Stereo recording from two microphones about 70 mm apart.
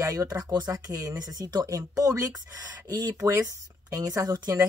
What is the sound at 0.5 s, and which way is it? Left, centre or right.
Speech, right.